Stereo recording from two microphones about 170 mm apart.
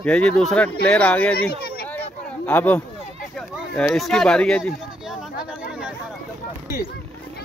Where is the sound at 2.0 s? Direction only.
10° left (ahead or behind).